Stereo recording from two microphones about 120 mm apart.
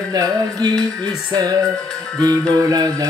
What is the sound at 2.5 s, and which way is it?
Music, 30° right (ahead or behind).